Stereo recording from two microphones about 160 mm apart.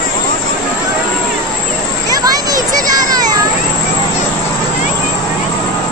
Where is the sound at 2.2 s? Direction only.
20° right (ahead or behind).